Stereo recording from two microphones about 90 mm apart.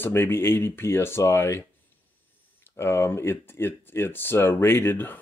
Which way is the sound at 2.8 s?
30° left (ahead or behind).